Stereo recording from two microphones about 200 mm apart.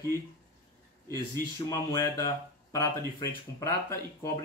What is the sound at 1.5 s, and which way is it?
Speech, 15° left (ahead or behind).